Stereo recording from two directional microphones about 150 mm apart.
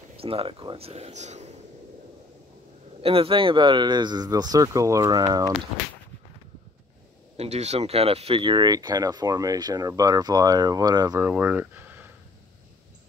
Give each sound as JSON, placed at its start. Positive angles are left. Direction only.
{"t": 0.2, "sound": "speech", "side_deg": -40}
{"t": 3.0, "sound": "speech", "side_deg": -40}
{"t": 7.3, "sound": "speech", "side_deg": -45}
{"t": 11.2, "sound": "speech", "side_deg": -15}